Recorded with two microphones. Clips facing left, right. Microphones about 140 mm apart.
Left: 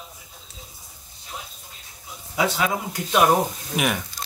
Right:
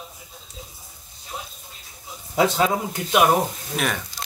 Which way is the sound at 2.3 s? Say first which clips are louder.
Right 4 dB; 40° right (ahead or behind).